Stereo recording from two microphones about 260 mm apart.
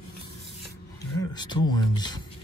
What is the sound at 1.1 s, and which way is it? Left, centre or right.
Speech, centre.